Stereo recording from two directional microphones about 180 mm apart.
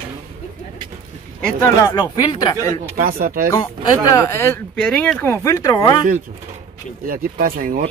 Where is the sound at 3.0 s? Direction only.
50° right (ahead or behind).